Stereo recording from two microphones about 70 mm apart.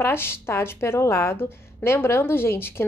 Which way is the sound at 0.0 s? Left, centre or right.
Left.